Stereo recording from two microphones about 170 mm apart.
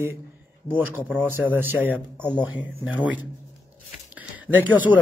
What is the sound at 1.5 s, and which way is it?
Speech, 10° right (ahead or behind).